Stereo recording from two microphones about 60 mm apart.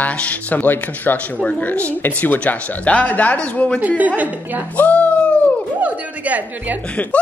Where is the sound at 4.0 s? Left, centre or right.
Right.